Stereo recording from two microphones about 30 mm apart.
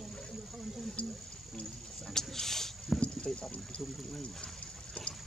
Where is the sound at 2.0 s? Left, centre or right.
Centre.